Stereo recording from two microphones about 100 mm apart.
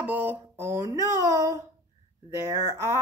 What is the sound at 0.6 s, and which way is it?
Speech, 35° right (ahead or behind).